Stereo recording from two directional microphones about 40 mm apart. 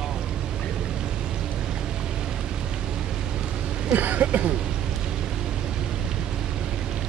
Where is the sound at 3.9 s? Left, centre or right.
Right.